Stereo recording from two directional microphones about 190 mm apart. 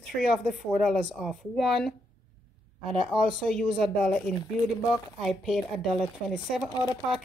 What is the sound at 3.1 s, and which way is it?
Speech, 5° left (ahead or behind).